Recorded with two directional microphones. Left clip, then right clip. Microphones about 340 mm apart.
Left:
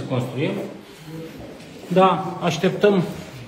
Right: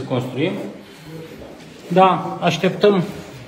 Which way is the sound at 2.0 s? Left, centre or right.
Centre.